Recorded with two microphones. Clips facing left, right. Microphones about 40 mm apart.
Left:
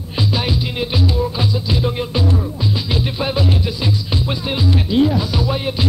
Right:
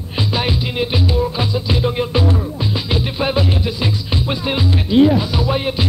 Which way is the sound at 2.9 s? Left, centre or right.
Centre.